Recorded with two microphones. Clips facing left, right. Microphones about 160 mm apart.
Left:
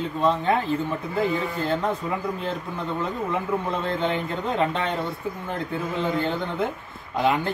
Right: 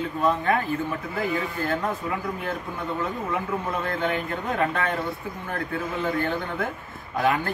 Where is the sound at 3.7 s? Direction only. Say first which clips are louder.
Right 1 dB; 25° left (ahead or behind).